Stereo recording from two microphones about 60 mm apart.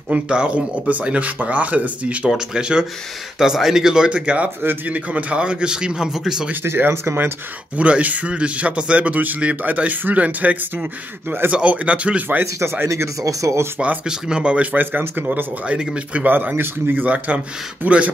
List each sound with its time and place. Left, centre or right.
0.1 s a man's voice: centre
4.6 s a man's voice: right; by 6.5 s centre
6.5 s speech: right
7.7 s a man's voice: right
12.8 s speech: right
13.2 s speech: right
13.7 s a man's voice: centre; by 15.4 s right
15.6 s a man's voice: centre
16.3 s a man's voice: right